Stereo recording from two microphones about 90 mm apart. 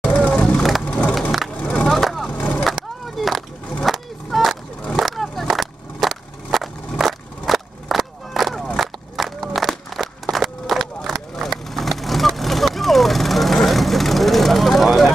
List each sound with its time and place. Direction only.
0.0 s vehicle: 15° left (ahead or behind)
1.5 s skateboard: 10° left (ahead or behind)
2.7 s a sound: centre (ahead or behind)
3.8 s skateboard: centre (ahead or behind)
8.7 s a sound: centre (ahead or behind)
11.7 s vehicle: centre (ahead or behind)